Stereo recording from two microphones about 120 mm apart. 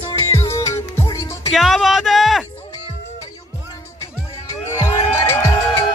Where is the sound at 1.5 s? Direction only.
Centre (ahead or behind).